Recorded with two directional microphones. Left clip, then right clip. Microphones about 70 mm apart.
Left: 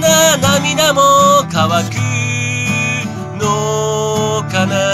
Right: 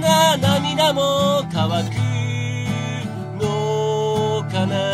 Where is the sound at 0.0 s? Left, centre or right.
Right.